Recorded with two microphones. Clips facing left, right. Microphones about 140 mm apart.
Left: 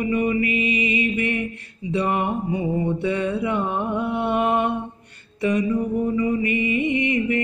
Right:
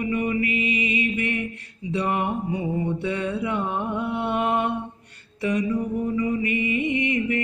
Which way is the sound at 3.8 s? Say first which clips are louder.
Left 3 dB; 50° left (ahead or behind).